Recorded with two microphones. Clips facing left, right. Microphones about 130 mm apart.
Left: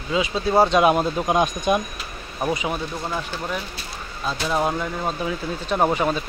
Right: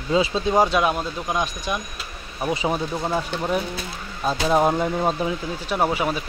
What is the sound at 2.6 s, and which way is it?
Speech, 25° right (ahead or behind).